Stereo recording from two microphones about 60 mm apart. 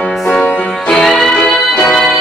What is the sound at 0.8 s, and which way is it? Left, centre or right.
Music, centre.